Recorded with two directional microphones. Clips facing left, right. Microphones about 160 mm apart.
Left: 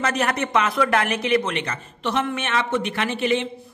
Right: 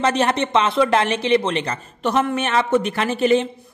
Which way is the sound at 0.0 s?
30° right (ahead or behind).